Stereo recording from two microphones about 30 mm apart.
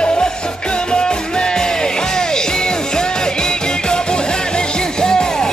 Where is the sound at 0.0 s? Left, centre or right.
Left.